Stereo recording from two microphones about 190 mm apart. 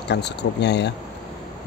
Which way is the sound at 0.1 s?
65° left (ahead or behind).